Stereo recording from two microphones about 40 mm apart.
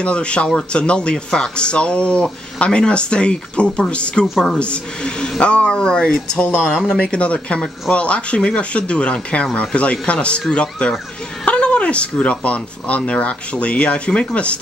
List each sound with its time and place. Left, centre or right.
0.0 s a man's voice: left